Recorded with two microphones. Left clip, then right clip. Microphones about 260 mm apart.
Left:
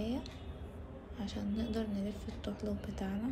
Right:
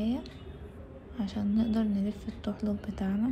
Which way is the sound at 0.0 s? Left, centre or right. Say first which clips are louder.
Right 5 dB; right.